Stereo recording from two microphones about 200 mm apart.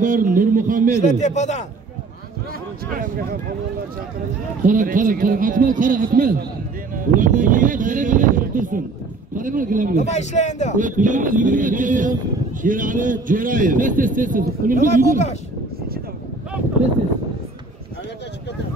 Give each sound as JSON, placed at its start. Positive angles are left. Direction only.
{"t": 0.0, "sound": "speech", "side_deg": -40}
{"t": 1.0, "sound": "speech", "side_deg": 35}
{"t": 2.9, "sound": "speech", "side_deg": -45}
{"t": 4.6, "sound": "a man's voice", "side_deg": -40}
{"t": 10.1, "sound": "speech", "side_deg": 35}
{"t": 10.8, "sound": "a man's voice", "side_deg": -40}